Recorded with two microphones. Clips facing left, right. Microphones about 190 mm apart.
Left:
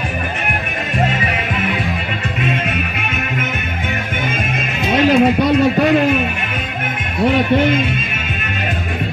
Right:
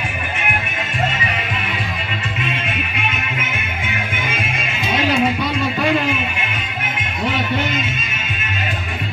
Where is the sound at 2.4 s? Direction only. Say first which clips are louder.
Left 5 dB; 45° left (ahead or behind).